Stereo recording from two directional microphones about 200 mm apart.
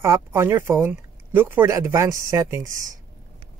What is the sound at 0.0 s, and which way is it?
Speech, 15° right (ahead or behind).